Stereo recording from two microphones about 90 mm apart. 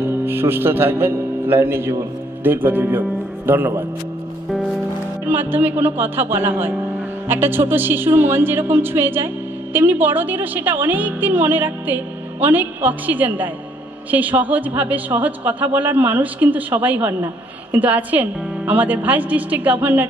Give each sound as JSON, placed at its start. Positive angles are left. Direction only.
{"t": 0.0, "sound": "a man's voice", "side_deg": -25}
{"t": 5.2, "sound": "a woman's voice", "side_deg": -20}